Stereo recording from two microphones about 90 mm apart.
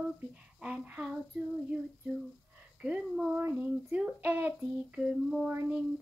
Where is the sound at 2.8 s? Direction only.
10° right (ahead or behind).